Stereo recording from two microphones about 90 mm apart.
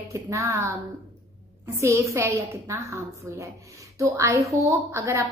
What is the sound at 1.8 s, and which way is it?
A woman's voice, 35° right (ahead or behind).